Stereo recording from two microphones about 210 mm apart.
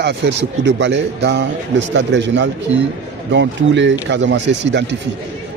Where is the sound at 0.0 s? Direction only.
55° right (ahead or behind).